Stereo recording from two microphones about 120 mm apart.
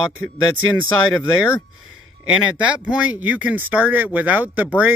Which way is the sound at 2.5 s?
10° right (ahead or behind).